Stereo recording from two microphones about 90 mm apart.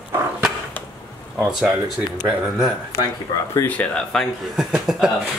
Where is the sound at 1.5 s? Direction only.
5° right (ahead or behind).